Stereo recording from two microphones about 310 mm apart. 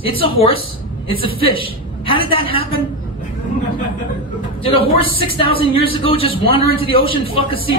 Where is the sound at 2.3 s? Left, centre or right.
Centre.